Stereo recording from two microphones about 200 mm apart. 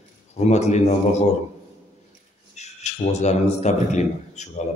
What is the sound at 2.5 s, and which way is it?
A man's voice, 35° left (ahead or behind).